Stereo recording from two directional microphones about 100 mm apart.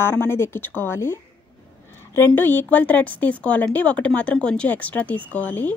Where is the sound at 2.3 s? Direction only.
20° left (ahead or behind).